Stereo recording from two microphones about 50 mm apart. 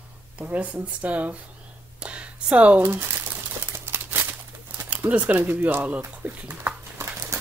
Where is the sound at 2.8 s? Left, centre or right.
Right.